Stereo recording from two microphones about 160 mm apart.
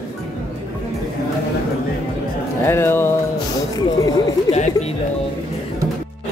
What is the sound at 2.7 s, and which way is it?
Speech, 15° left (ahead or behind).